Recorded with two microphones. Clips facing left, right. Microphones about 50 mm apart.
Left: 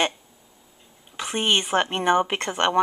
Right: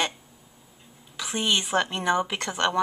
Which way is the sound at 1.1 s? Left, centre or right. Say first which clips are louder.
Left 3 dB; left.